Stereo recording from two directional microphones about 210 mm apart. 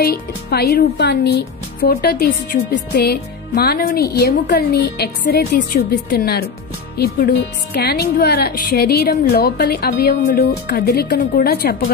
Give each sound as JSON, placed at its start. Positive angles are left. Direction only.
{"t": 0.0, "sound": "speech", "side_deg": 50}